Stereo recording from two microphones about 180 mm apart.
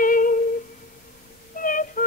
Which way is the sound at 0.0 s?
50° left (ahead or behind).